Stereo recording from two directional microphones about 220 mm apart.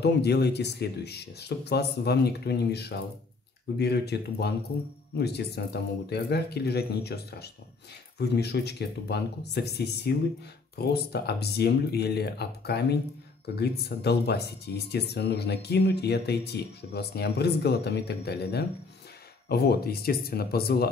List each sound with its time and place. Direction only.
0.0 s speech: 50° left (ahead or behind)